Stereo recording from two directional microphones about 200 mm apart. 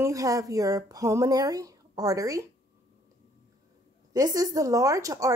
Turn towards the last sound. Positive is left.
turn(degrees=-15)  # may be behind; listen again after turning